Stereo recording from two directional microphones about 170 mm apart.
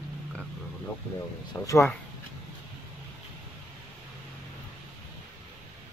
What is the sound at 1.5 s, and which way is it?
Speech, 15° left (ahead or behind).